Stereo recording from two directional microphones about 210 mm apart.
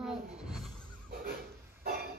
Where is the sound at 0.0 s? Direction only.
Centre (ahead or behind).